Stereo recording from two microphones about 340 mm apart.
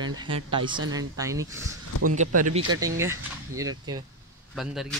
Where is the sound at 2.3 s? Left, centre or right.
Right.